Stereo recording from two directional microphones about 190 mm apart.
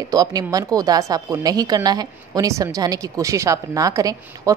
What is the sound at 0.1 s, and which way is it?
A woman's voice, 20° right (ahead or behind).